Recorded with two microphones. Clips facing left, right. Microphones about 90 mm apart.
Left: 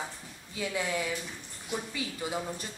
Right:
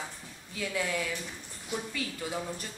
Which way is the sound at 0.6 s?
20° left (ahead or behind).